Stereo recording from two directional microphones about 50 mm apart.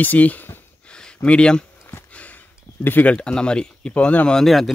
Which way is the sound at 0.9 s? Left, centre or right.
Centre.